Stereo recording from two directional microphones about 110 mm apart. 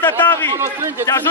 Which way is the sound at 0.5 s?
25° right (ahead or behind).